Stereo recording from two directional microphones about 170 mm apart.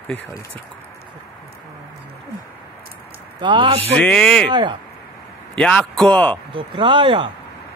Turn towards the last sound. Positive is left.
turn(degrees=-30)  # may be behind; listen again after turning